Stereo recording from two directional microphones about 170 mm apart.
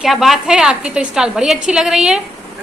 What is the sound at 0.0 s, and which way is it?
A woman's voice, centre (ahead or behind).